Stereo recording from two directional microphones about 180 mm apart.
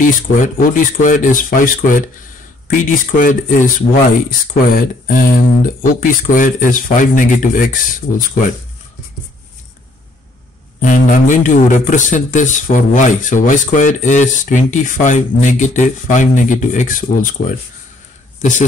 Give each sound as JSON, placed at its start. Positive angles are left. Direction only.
{"t": 0.0, "sound": "a man's voice", "side_deg": 50}
{"t": 10.8, "sound": "a man's voice", "side_deg": 45}
{"t": 18.4, "sound": "a man's voice", "side_deg": 45}